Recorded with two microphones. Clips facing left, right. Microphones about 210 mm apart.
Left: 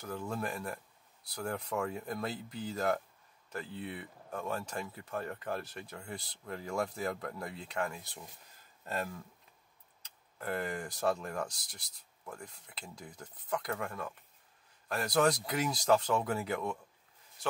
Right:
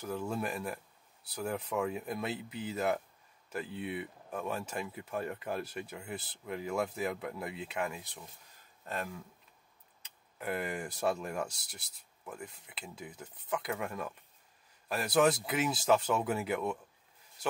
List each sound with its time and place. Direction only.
0.1 s speech: 10° right (ahead or behind)
10.4 s speech: 10° right (ahead or behind)